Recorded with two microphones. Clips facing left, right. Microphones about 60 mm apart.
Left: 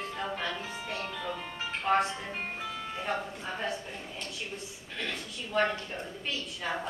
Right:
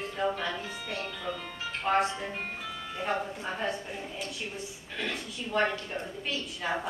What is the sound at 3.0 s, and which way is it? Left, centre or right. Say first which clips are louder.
A woman's voice: right 4 dB; centre.